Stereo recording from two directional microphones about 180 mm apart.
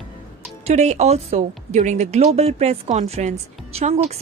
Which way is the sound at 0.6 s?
40° right (ahead or behind).